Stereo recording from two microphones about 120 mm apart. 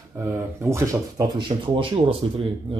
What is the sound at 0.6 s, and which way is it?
Speech, 25° right (ahead or behind).